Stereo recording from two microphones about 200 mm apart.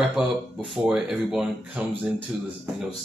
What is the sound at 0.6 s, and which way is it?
Speech, centre (ahead or behind).